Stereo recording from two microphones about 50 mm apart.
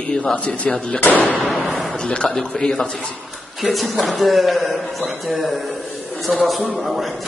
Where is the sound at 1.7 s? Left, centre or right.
Centre.